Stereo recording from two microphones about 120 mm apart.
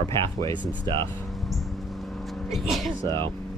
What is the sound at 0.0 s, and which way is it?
Speech, 45° right (ahead or behind).